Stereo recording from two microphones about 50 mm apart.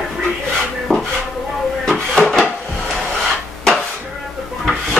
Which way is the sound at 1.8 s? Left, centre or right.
Centre.